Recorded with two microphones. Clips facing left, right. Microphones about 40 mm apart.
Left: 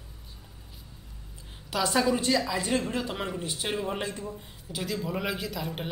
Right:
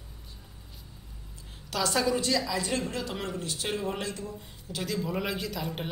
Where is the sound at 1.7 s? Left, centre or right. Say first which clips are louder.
Left 2 dB; centre.